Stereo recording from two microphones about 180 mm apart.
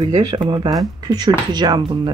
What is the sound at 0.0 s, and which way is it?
Speech, 25° right (ahead or behind).